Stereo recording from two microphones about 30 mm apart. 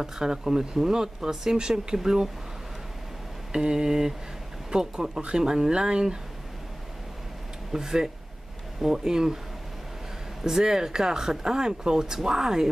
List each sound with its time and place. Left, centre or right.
0.0 s speech: right
3.5 s speech: right
7.7 s speech: centre
10.4 s speech: centre